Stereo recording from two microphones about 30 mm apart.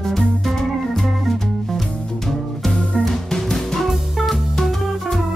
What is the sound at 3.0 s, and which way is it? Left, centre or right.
Music, centre.